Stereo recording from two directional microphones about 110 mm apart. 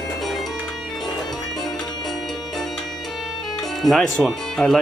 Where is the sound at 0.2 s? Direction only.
Centre (ahead or behind).